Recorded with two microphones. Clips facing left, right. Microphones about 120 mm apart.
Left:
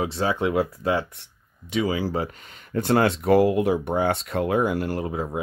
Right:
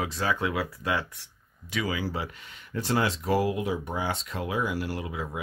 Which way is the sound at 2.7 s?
55° left (ahead or behind).